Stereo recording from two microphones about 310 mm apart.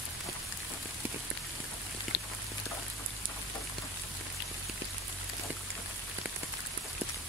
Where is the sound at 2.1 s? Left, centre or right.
Left.